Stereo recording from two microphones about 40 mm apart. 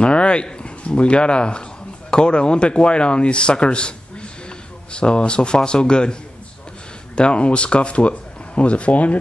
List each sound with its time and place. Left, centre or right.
0.0 s speech: left
7.2 s speech: left